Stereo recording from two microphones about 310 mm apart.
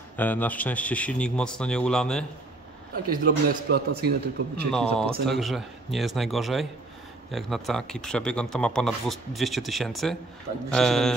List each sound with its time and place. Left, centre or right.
0.2 s speech: centre
3.1 s a man's voice: right
4.6 s speech: centre